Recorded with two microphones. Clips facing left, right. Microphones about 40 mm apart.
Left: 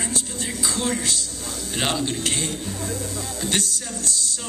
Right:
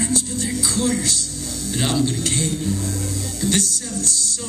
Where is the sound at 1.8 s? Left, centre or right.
Left.